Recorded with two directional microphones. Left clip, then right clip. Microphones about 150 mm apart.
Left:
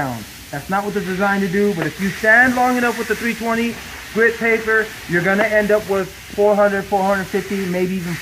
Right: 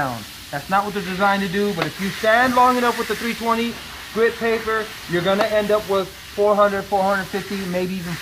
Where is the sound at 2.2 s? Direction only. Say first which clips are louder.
Left 2 dB; 20° right (ahead or behind).